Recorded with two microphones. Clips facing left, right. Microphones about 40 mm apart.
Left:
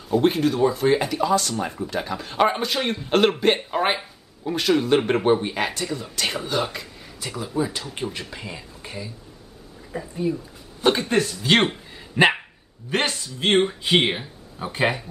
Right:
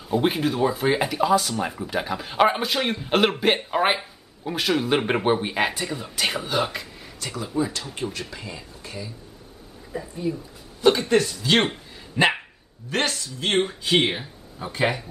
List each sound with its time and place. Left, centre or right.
0.1 s speech: centre
7.2 s speech: centre
8.1 s speech: centre
9.9 s speech: centre
12.9 s speech: left